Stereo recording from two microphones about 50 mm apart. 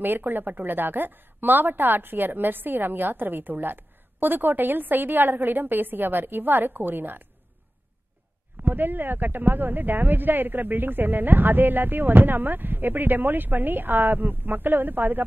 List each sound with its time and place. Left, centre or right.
0.0 s a woman's voice: right
8.6 s a woman's voice: right